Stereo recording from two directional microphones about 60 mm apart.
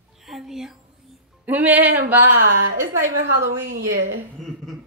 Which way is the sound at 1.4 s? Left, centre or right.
Right.